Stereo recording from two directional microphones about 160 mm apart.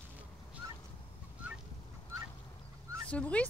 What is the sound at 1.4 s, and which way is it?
Fowl, 5° right (ahead or behind).